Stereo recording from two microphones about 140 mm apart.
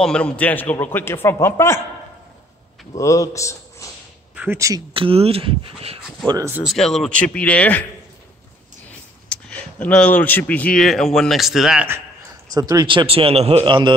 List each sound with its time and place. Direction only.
0.0 s a man's voice: 5° left (ahead or behind)
2.9 s speech: 25° left (ahead or behind)
4.4 s speech: 20° right (ahead or behind)
4.9 s a man's voice: 40° right (ahead or behind)
6.2 s speech: 25° right (ahead or behind)
6.6 s a man's voice: centre (ahead or behind)
9.3 s speech: 10° left (ahead or behind)
12.5 s a man's voice: 25° right (ahead or behind)